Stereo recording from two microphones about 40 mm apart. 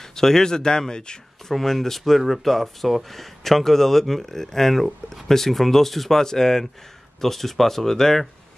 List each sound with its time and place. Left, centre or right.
0.0 s speech: centre
1.5 s speech: centre